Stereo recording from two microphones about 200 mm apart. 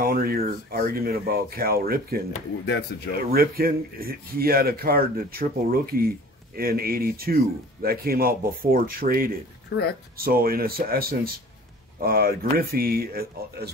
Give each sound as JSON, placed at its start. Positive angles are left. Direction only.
{"t": 0.0, "sound": "speech", "side_deg": -45}
{"t": 2.9, "sound": "speech", "side_deg": 55}
{"t": 3.3, "sound": "speech", "side_deg": -50}